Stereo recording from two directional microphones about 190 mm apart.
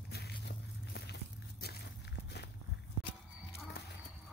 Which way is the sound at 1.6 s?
55° left (ahead or behind).